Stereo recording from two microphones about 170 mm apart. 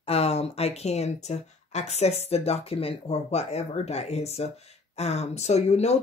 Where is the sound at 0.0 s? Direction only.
35° left (ahead or behind).